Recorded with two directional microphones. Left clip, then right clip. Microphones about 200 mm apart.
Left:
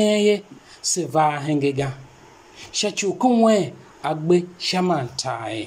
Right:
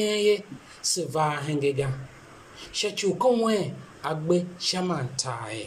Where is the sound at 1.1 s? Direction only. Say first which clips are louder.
Left 9 dB; 20° left (ahead or behind).